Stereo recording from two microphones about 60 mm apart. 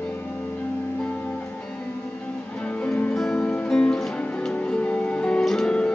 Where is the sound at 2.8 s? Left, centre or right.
Centre.